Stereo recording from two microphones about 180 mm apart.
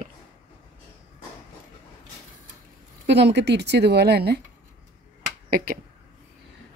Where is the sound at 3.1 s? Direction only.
70° right (ahead or behind).